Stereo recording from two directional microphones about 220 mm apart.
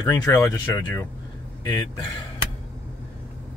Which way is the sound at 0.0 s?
15° left (ahead or behind).